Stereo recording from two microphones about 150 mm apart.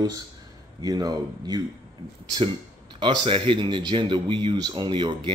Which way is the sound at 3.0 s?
35° right (ahead or behind).